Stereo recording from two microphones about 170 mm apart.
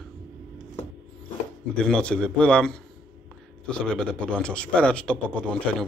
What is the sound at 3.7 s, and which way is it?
A man's voice, 5° left (ahead or behind).